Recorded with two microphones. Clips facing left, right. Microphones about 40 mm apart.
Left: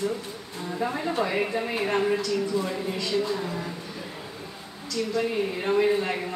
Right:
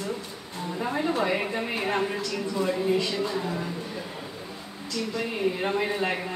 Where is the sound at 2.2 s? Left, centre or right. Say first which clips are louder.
Left 2 dB; right.